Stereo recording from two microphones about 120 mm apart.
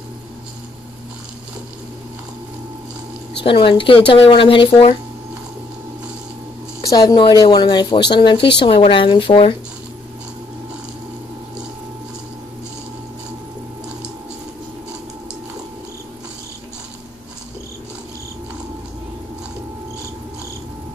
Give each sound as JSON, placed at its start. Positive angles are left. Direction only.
{"t": 3.4, "sound": "speech", "side_deg": 45}
{"t": 6.9, "sound": "speech", "side_deg": 30}